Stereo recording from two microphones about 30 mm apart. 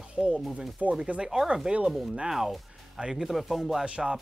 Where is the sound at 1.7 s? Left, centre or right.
Right.